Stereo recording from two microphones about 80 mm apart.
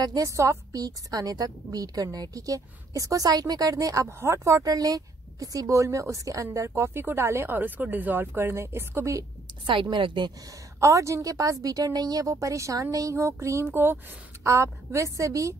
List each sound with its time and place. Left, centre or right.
0.0 s a woman's voice: right
0.7 s a woman's voice: right
9.7 s a woman's voice: right
10.8 s a woman's voice: right